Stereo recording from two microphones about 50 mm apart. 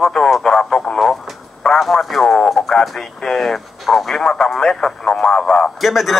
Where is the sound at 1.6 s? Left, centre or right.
Left.